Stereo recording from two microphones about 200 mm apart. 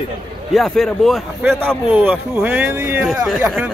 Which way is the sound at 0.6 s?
Centre (ahead or behind).